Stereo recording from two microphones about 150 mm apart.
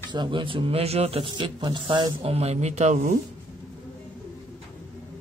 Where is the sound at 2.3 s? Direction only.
45° right (ahead or behind).